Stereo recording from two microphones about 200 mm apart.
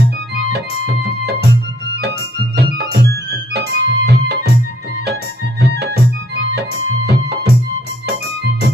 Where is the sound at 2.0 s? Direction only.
55° right (ahead or behind).